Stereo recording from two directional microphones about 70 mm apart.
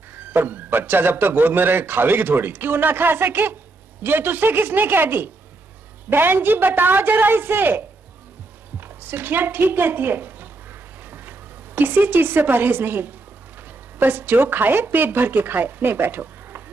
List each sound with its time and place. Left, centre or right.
0.1 s a man's voice: right